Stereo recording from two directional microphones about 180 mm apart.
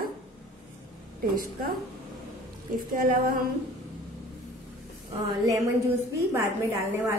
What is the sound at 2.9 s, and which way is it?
Speech, 50° right (ahead or behind).